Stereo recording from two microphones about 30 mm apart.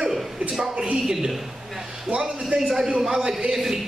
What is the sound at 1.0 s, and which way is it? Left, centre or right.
Speech, centre.